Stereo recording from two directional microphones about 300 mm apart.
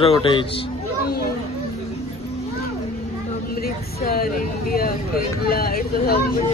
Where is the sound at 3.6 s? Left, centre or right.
Left.